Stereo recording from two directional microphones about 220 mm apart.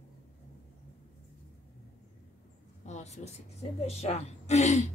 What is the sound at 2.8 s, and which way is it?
A woman's voice, 30° left (ahead or behind).